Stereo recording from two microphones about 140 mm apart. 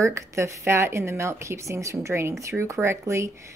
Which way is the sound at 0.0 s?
20° right (ahead or behind).